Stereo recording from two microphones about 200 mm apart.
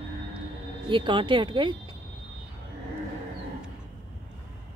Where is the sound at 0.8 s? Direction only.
25° right (ahead or behind).